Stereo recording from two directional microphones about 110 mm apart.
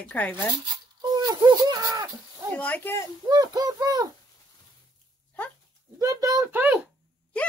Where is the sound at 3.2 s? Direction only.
35° right (ahead or behind).